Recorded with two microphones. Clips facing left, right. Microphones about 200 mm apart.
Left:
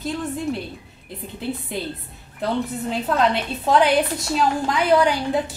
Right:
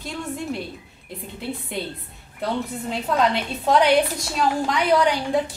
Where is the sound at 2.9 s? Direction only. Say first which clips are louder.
Even; centre (ahead or behind).